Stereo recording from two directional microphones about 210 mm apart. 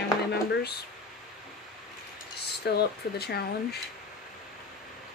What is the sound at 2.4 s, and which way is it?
Speech, 50° left (ahead or behind).